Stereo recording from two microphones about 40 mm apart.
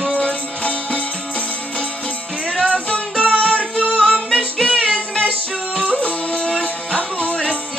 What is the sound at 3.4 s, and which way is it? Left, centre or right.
Music, left.